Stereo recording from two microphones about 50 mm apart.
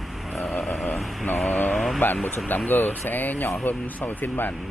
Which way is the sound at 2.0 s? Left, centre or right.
Left.